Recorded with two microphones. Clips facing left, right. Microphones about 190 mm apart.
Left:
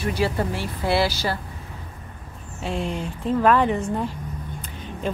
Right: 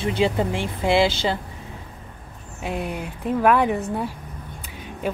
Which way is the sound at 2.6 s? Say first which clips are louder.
Left 1 dB; 15° right (ahead or behind).